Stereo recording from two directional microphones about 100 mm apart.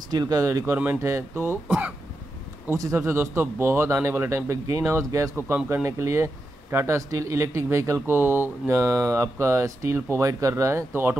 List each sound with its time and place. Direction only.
0.1 s speech: 35° right (ahead or behind)
2.7 s speech: 30° right (ahead or behind)